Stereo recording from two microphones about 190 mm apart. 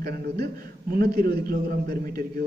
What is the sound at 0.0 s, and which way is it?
A man's voice, 55° right (ahead or behind).